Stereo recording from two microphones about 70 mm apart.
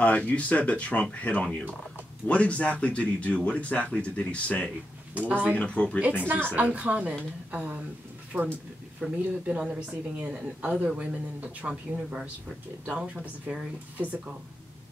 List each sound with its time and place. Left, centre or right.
0.0 s speech: left
6.2 s a woman's voice: right